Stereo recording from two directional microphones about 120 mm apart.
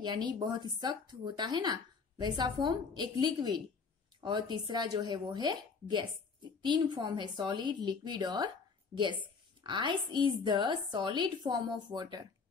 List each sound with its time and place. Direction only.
0.0 s speech: 40° right (ahead or behind)
9.6 s speech: 40° right (ahead or behind)